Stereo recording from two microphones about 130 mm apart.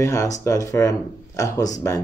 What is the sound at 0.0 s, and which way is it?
Speech, 25° left (ahead or behind).